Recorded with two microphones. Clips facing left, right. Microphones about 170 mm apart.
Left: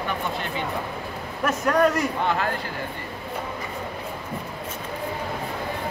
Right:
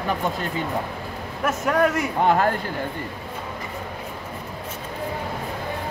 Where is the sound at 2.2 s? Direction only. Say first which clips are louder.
Right 10 dB; 45° right (ahead or behind).